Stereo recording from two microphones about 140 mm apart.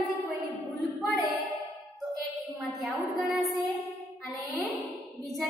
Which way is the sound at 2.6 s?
Centre (ahead or behind).